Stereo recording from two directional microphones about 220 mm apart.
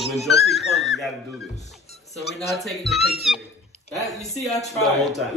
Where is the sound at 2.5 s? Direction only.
Centre (ahead or behind).